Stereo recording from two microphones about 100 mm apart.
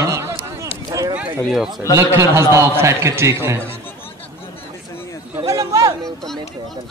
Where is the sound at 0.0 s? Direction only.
25° right (ahead or behind).